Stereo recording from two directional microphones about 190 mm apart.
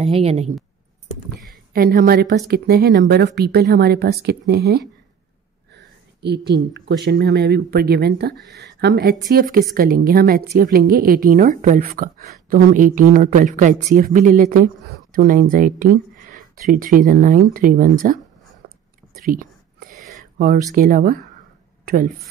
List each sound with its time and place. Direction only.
0.0 s a woman's voice: 30° right (ahead or behind)
1.7 s a woman's voice: 50° right (ahead or behind)
9.3 s a woman's voice: 50° right (ahead or behind)
18.6 s whispering: 55° right (ahead or behind)
19.2 s a sound: 45° right (ahead or behind)
20.7 s a woman's voice: 45° right (ahead or behind)